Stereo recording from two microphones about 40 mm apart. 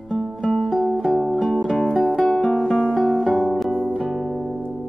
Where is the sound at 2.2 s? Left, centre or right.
Centre.